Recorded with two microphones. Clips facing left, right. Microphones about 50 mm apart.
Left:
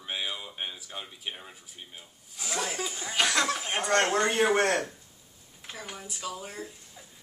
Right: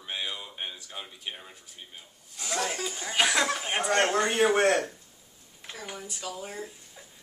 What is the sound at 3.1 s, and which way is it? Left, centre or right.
A man's voice, centre.